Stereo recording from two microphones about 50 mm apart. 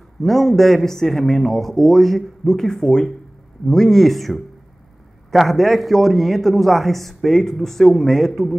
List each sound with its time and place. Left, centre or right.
0.2 s a man's voice: centre